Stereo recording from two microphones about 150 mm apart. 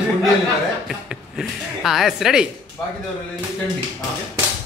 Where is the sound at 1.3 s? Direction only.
Centre (ahead or behind).